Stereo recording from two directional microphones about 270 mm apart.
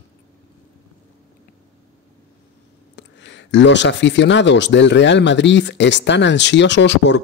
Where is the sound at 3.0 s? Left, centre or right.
Left.